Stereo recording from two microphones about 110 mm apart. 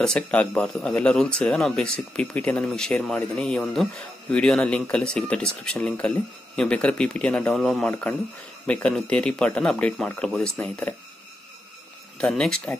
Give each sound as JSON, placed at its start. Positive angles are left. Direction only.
{"t": 0.0, "sound": "a man's voice", "side_deg": 10}
{"t": 7.9, "sound": "a man's voice", "side_deg": 15}
{"t": 12.2, "sound": "speech", "side_deg": 5}